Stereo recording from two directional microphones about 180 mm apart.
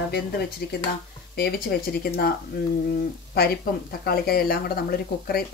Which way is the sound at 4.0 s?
60° left (ahead or behind).